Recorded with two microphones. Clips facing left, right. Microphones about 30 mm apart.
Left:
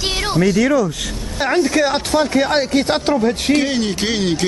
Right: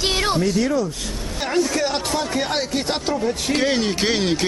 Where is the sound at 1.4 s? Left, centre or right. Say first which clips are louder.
Left 5 dB; left.